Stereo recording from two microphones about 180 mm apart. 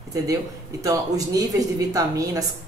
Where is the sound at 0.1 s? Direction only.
20° right (ahead or behind).